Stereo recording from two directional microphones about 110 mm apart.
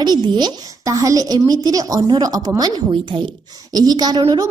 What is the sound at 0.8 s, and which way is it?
A woman's voice, 30° right (ahead or behind).